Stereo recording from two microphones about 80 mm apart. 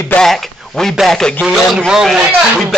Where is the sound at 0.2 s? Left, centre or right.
Centre.